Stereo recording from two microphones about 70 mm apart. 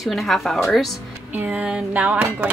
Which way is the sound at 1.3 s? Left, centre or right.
Right.